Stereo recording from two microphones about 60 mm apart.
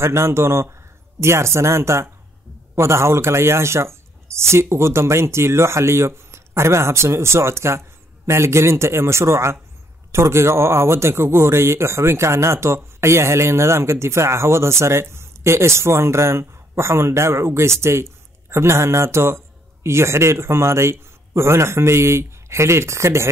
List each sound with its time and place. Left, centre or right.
0.0 s speech: right